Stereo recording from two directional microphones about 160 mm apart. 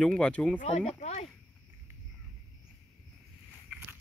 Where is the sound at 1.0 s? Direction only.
45° left (ahead or behind).